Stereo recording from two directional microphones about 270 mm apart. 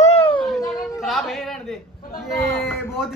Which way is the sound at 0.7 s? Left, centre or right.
Centre.